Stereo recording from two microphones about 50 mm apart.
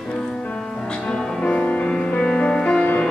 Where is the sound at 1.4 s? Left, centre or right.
Left.